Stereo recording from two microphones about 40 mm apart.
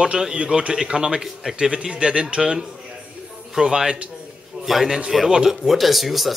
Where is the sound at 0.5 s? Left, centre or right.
Right.